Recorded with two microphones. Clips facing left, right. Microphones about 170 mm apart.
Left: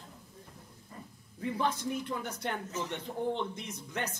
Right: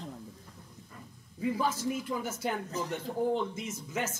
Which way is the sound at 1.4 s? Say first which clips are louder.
Right 2 dB; 5° right (ahead or behind).